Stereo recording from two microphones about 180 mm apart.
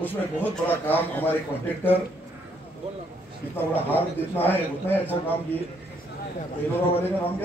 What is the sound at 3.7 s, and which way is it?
A man's voice, 10° left (ahead or behind).